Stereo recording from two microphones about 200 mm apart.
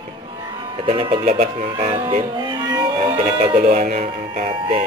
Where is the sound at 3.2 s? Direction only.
35° right (ahead or behind).